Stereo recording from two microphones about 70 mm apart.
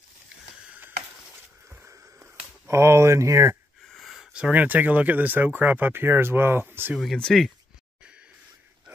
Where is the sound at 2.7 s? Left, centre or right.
Right.